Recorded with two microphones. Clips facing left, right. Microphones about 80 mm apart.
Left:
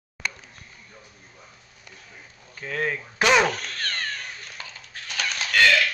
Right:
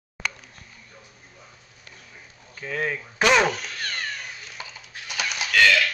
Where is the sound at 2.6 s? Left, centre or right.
Centre.